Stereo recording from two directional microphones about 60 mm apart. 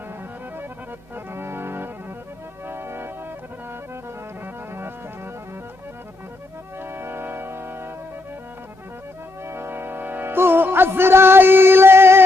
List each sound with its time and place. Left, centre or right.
1.1 s organ: right
4.7 s music: right
6.8 s organ: right
9.4 s music: right